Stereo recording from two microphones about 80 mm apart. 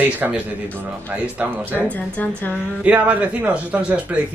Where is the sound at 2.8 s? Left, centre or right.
Centre.